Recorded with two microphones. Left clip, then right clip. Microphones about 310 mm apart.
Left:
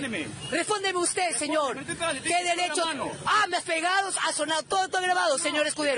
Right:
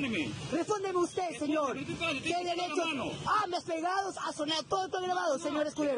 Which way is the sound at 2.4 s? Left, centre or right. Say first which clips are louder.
Left 7 dB; left.